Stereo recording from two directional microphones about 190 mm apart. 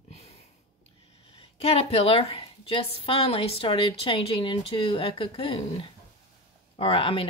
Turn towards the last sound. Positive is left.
turn(degrees=30)  # may be behind; listen again after turning